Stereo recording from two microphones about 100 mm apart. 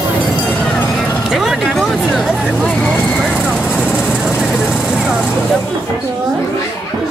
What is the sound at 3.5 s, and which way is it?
Vehicle, 10° left (ahead or behind).